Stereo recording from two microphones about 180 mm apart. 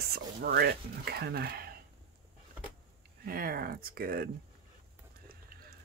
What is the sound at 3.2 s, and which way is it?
Speech, 55° right (ahead or behind).